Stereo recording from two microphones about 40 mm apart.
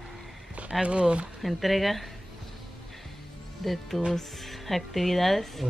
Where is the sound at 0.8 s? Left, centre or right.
Right.